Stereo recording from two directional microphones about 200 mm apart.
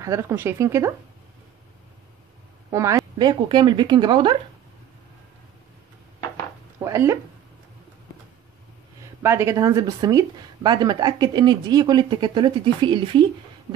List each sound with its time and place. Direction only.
0.0 s speech: 15° right (ahead or behind)
2.7 s speech: 15° right (ahead or behind)
6.8 s speech: 15° right (ahead or behind)
9.2 s speech: 15° right (ahead or behind)